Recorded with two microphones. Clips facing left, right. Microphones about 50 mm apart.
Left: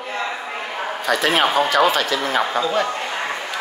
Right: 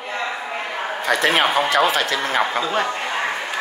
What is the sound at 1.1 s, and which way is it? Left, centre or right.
Speech, right.